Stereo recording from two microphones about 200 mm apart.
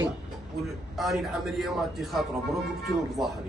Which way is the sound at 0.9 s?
Centre (ahead or behind).